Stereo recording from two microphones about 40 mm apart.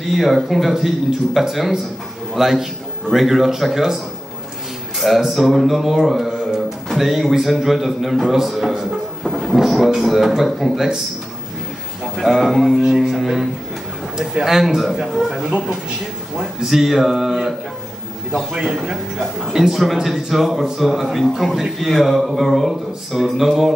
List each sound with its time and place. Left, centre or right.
0.0 s a man's voice: centre
5.3 s speech: centre
6.2 s a sound: centre
7.0 s a man's voice: centre
12.0 s a man's voice: centre
15.3 s a man's voice: centre